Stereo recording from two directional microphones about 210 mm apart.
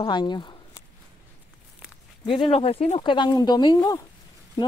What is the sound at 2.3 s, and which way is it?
Speech, 25° left (ahead or behind).